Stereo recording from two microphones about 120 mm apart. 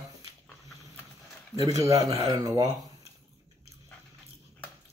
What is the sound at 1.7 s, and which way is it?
A man's voice, 30° right (ahead or behind).